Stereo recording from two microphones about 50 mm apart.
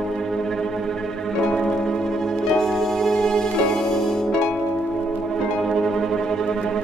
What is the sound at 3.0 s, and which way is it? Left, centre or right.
Music, centre.